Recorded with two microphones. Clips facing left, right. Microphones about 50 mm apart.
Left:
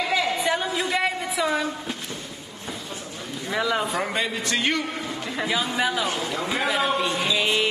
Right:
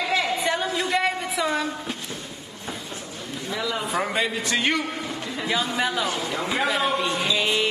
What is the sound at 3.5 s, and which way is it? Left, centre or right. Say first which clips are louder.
Speech: left 4 dB; left.